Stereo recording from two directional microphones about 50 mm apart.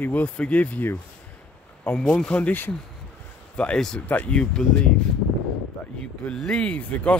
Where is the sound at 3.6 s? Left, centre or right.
Centre.